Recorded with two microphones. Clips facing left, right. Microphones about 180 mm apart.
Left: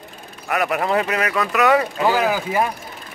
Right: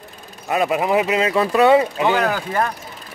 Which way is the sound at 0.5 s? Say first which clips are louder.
Right 2 dB; 20° right (ahead or behind).